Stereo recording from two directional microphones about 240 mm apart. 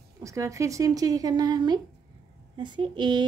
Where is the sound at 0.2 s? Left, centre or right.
Centre.